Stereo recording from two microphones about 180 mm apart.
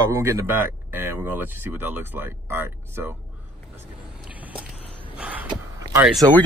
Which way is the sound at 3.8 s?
10° right (ahead or behind).